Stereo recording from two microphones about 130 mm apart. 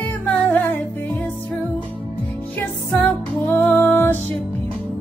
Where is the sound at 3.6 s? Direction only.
15° left (ahead or behind).